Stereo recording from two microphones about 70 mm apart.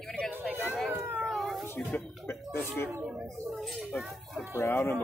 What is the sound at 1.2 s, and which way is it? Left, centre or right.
Cat, centre.